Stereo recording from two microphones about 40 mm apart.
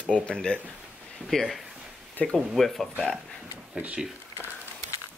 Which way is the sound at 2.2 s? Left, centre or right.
Left.